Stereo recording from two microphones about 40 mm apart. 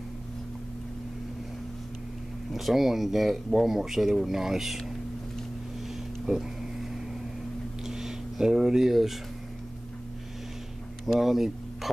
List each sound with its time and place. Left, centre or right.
2.5 s speech: centre
6.2 s a sound: centre
11.1 s speech: centre